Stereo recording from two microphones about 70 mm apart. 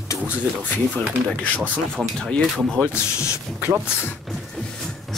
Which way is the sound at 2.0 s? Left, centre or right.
Centre.